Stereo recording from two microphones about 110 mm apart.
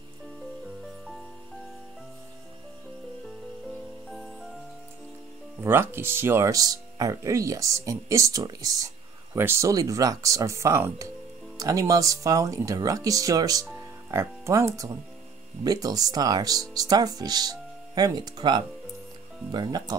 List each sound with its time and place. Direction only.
4.1 s music: centre (ahead or behind)
5.6 s speech: 20° right (ahead or behind); by 20.0 s 40° right (ahead or behind)